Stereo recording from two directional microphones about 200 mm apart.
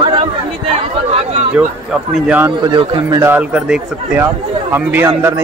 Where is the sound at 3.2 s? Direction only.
10° right (ahead or behind).